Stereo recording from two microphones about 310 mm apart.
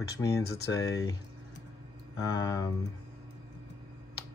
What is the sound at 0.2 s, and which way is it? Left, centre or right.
Speech, centre.